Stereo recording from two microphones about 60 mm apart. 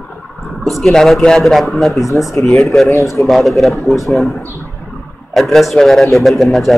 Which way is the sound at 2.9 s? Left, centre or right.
Left.